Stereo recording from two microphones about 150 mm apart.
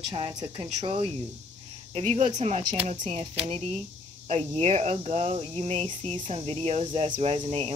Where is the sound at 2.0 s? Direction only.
50° right (ahead or behind).